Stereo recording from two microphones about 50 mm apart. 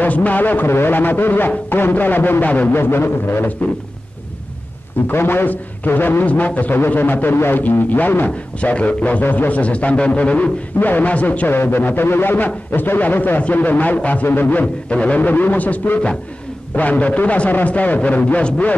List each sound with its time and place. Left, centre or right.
0.0 s a man's voice: left
2.4 s a man's voice: left
2.7 s a man's voice: left
5.1 s a man's voice: left
6.2 s a man's voice: left
8.5 s a man's voice: left
9.2 s a man's voice: left
11.4 s a man's voice: left
14.2 s a man's voice: left